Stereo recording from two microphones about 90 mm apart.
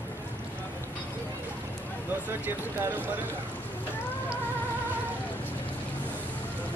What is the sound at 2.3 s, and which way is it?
Speech, 25° right (ahead or behind).